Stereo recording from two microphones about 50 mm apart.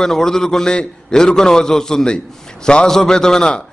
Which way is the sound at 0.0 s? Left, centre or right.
Centre.